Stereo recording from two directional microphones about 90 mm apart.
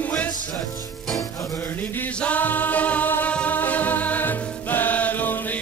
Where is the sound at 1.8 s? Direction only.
15° left (ahead or behind).